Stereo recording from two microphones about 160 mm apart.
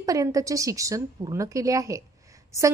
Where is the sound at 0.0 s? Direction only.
20° right (ahead or behind).